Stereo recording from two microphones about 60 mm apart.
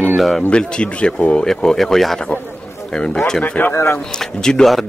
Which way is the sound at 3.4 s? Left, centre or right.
Left.